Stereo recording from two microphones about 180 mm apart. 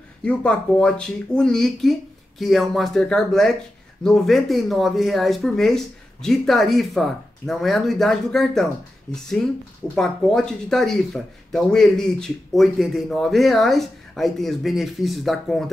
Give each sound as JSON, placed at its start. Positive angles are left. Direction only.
{"t": 0.2, "sound": "speech", "side_deg": 5}